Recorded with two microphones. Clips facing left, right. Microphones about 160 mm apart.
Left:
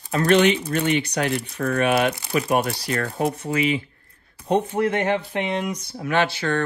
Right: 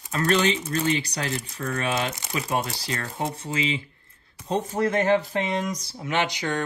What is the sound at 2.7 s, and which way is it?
Speech, 25° right (ahead or behind).